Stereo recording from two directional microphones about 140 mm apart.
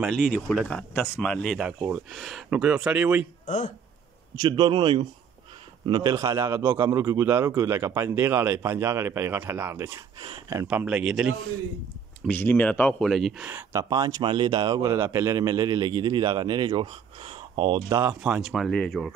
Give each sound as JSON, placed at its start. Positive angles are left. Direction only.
{"t": 0.0, "sound": "speech", "side_deg": 5}
{"t": 3.4, "sound": "a man's voice", "side_deg": 60}
{"t": 4.4, "sound": "speech", "side_deg": -35}
{"t": 6.1, "sound": "speech", "side_deg": -20}
{"t": 10.1, "sound": "speech", "side_deg": -30}
{"t": 10.7, "sound": "speech", "side_deg": -5}
{"t": 12.3, "sound": "speech", "side_deg": 15}
{"t": 13.5, "sound": "speech", "side_deg": -20}
{"t": 17.8, "sound": "speech", "side_deg": -20}
{"t": 18.2, "sound": "speech", "side_deg": 0}